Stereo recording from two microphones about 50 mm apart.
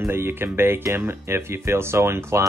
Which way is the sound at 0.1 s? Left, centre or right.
Right.